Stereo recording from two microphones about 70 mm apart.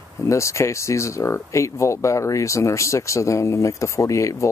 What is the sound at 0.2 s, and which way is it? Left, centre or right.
Speech, left.